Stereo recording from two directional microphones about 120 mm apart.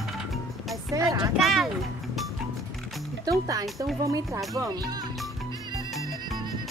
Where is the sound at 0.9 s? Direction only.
30° right (ahead or behind).